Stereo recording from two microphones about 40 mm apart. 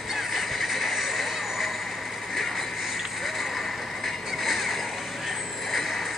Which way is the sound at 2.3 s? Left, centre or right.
Centre.